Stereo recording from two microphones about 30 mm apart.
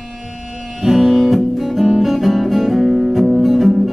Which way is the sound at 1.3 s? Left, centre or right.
Centre.